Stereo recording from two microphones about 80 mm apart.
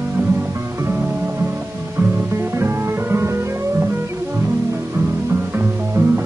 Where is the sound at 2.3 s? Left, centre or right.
Right.